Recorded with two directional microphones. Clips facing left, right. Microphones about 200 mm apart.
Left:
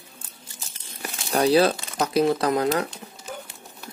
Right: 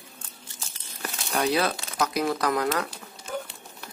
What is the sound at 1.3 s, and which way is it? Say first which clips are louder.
Speech: left 6 dB; 30° left (ahead or behind).